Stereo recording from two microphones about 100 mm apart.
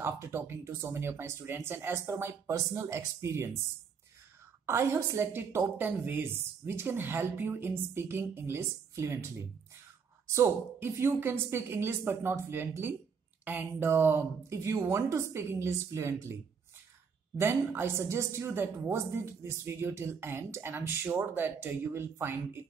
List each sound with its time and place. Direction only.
0.0 s a woman's voice: 25° right (ahead or behind)
4.6 s a woman's voice: 25° right (ahead or behind)
17.4 s a woman's voice: 25° right (ahead or behind)